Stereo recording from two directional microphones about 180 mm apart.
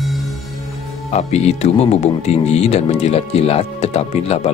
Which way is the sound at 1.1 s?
35° left (ahead or behind).